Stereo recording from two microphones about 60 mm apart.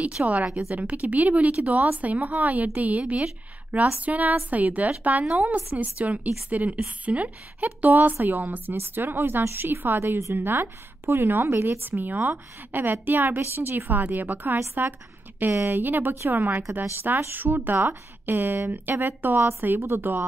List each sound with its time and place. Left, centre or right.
0.2 s a woman's voice: right